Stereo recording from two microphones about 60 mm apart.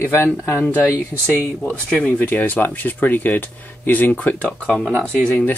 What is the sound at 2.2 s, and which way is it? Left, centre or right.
Speech, left.